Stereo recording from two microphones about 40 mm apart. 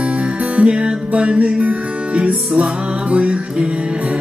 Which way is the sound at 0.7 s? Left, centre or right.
Right.